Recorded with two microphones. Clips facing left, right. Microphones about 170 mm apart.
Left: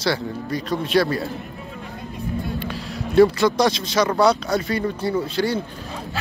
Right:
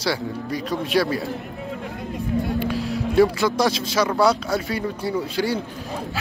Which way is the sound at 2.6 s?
5° right (ahead or behind).